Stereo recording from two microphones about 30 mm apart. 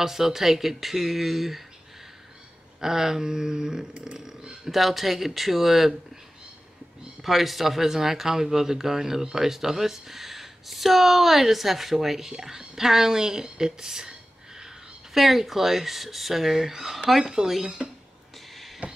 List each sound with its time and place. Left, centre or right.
0.0 s speech: centre
2.8 s speech: centre
4.0 s a sound: right
4.6 s speech: centre
7.2 s speech: centre
15.1 s speech: centre; by 17.9 s right
18.5 s a sound: centre